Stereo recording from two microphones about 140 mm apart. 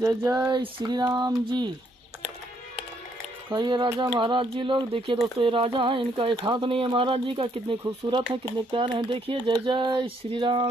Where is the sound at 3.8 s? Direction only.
25° right (ahead or behind).